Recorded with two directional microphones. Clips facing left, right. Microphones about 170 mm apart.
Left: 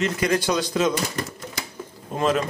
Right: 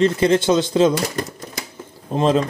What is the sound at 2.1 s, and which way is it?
Speech, 30° right (ahead or behind).